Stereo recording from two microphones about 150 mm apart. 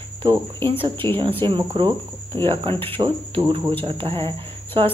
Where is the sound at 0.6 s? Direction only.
35° right (ahead or behind).